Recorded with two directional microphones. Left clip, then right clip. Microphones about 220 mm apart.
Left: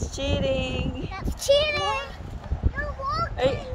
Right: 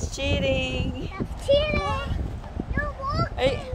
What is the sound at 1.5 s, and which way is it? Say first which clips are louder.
Speech: left 1 dB; 55° left (ahead or behind).